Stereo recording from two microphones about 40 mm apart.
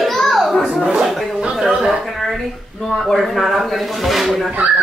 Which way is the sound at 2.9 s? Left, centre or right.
Centre.